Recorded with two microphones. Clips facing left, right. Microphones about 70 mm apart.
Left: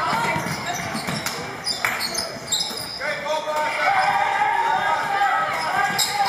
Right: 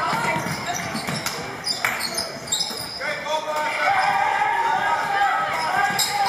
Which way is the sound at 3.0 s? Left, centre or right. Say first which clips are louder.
Left 1 dB; centre.